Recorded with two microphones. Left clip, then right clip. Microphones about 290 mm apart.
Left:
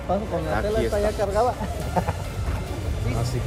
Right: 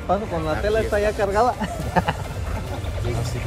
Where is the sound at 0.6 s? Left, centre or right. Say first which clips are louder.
Right 5 dB; right.